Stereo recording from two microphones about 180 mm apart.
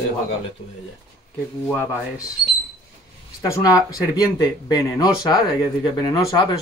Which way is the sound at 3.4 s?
20° left (ahead or behind).